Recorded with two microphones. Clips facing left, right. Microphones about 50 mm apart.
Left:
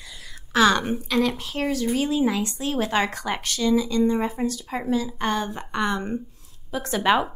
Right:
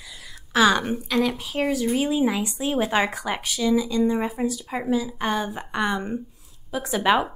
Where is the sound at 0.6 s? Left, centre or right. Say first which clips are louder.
Even; centre.